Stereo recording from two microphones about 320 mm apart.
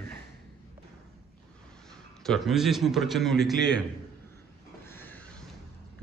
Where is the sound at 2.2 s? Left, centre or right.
Centre.